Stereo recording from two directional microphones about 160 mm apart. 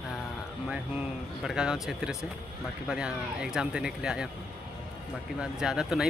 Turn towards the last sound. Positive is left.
turn(degrees=-5)  # may be behind; listen again after turning